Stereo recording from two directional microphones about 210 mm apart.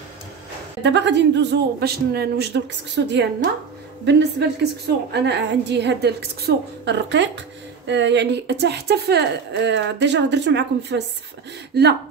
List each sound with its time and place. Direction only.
0.8 s a woman's voice: 55° right (ahead or behind)